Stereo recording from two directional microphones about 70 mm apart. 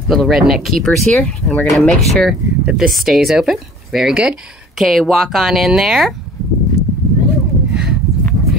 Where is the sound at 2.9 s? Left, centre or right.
Centre.